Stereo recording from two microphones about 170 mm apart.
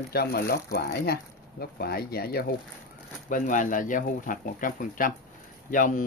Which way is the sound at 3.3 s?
50° left (ahead or behind).